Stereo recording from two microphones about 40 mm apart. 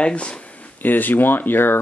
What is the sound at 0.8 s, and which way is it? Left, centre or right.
Speech, left.